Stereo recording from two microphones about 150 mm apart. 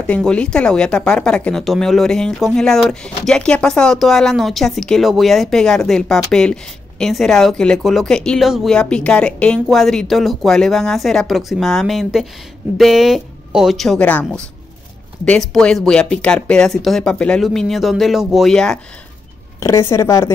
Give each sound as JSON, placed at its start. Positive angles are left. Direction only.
{"t": 0.0, "sound": "speech", "side_deg": 5}
{"t": 19.6, "sound": "a woman's voice", "side_deg": 20}